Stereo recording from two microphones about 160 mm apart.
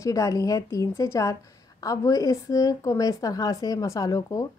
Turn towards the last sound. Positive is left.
turn(degrees=20)  # may be behind; listen again after turning